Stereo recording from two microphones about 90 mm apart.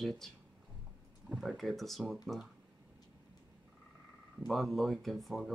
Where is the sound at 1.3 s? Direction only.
Centre (ahead or behind).